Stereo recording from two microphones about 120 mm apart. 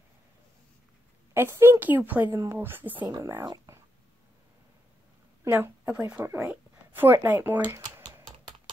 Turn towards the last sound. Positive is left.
turn(degrees=-15)  # may be behind; listen again after turning